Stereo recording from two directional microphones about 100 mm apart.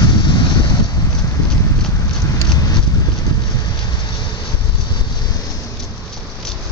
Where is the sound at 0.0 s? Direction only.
50° left (ahead or behind).